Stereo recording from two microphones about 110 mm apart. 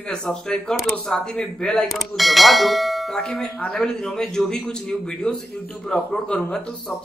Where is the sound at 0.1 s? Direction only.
5° left (ahead or behind).